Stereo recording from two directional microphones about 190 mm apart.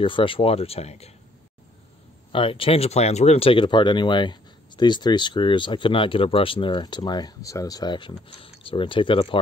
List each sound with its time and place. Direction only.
0.0 s speech: 25° left (ahead or behind)
2.3 s speech: 25° left (ahead or behind)